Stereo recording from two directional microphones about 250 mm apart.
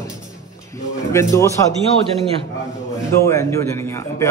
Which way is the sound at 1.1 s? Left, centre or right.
Centre.